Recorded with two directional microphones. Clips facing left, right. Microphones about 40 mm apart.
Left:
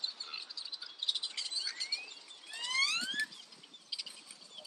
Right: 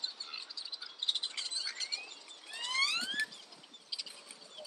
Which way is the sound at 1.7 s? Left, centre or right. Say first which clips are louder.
Even; right.